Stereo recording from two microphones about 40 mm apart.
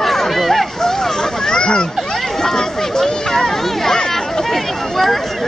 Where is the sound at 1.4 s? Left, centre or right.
Centre.